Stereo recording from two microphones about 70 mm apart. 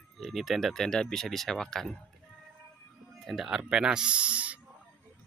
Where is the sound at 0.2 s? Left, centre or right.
Centre.